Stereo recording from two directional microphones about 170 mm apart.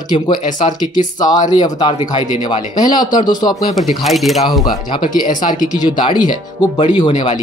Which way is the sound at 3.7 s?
Centre (ahead or behind).